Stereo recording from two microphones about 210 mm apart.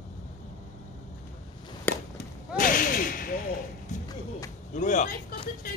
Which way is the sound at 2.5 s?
40° left (ahead or behind).